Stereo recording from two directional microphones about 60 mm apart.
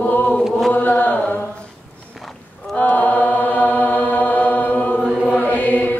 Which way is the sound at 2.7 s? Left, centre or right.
Left.